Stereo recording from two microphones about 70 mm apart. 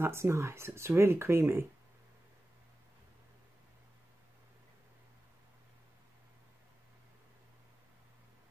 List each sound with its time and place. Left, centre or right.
0.0 s speech: right